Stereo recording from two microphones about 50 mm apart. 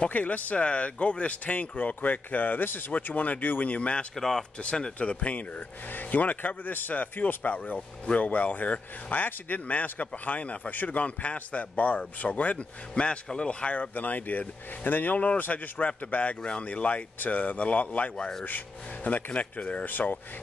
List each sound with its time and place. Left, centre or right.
0.0 s speech: left
4.1 s speech: centre
4.6 s a man's voice: centre
19.9 s speech: left